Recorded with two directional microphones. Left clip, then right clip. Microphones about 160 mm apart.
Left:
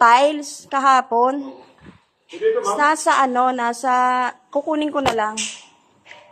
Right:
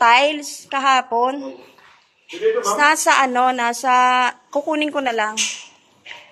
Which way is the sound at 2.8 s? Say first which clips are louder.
Right 2 dB; 20° left (ahead or behind).